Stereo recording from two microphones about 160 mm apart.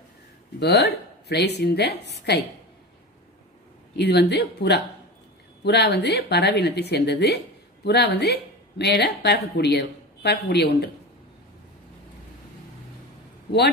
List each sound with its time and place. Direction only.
0.6 s speech: 90° left
3.9 s speech: 90° left